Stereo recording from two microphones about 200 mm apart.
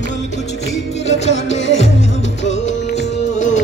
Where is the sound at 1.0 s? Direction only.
35° left (ahead or behind).